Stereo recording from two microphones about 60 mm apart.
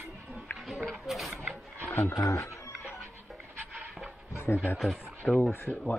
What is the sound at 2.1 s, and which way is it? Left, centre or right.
Speech, left.